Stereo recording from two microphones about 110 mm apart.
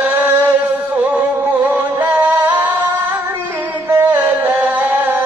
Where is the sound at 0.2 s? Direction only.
15° right (ahead or behind).